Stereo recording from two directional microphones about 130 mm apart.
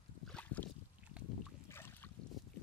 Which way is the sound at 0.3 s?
10° left (ahead or behind).